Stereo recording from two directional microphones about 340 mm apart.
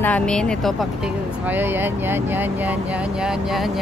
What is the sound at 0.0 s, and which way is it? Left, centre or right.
Speech, centre.